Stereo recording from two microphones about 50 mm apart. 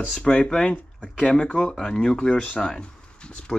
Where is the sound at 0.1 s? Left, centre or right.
Centre.